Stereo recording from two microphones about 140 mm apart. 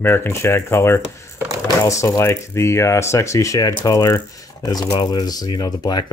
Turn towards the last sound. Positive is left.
turn(degrees=30)  # may be behind; listen again after turning